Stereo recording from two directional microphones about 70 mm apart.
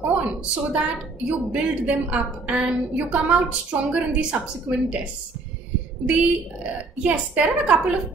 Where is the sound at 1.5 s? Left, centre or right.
Centre.